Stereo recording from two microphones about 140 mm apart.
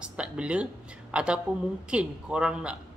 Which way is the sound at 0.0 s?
10° right (ahead or behind).